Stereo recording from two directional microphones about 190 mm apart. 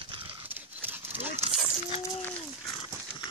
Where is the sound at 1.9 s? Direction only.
30° left (ahead or behind).